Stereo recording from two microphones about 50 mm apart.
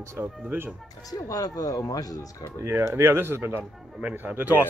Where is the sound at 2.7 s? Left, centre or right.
Right.